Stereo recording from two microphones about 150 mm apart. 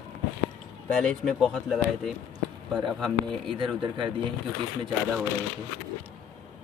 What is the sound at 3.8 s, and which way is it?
Speech, 35° right (ahead or behind).